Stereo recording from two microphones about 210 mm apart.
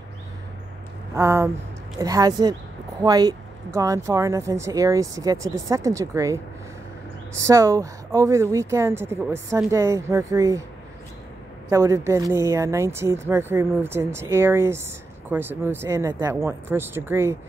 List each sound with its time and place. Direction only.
1.1 s speech: 15° right (ahead or behind)
11.7 s speech: 15° right (ahead or behind)